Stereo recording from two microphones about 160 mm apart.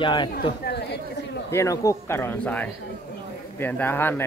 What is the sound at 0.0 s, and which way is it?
Speech, 30° left (ahead or behind).